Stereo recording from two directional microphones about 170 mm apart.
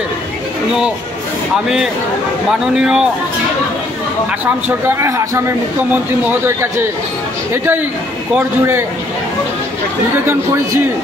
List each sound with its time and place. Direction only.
2.8 s speech: 5° right (ahead or behind)
4.6 s speech: 15° right (ahead or behind)
7.5 s speech: 15° right (ahead or behind)